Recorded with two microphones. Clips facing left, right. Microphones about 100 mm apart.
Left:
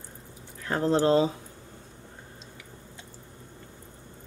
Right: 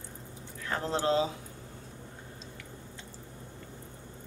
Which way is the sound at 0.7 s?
40° left (ahead or behind).